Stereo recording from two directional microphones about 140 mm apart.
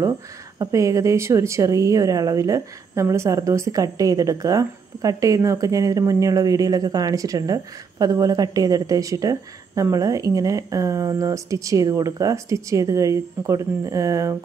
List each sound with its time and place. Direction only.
0.6 s a woman's voice: 25° right (ahead or behind)